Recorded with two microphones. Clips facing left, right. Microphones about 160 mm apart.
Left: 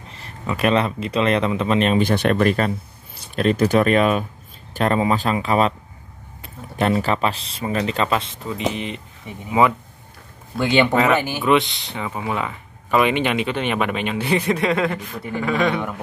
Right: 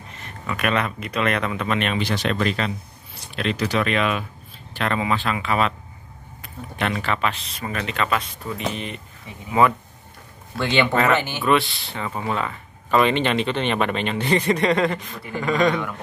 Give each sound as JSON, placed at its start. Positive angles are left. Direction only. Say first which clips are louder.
{"t": 0.2, "sound": "speech", "louder": "left 5 dB", "side_deg": 30}
{"t": 2.0, "sound": "speech", "louder": "left 6 dB", "side_deg": 50}